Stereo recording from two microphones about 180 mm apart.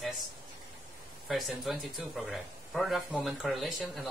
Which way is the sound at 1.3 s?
Centre (ahead or behind).